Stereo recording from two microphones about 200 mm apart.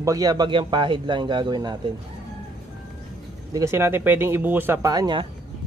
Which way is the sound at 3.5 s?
15° right (ahead or behind).